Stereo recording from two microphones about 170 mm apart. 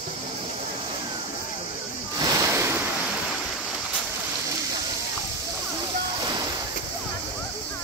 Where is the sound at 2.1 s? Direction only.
20° right (ahead or behind).